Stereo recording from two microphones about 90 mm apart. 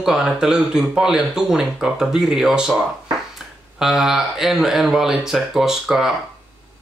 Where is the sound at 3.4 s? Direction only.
5° right (ahead or behind).